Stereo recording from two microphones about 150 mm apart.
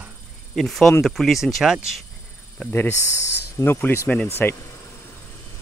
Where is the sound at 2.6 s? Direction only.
15° left (ahead or behind).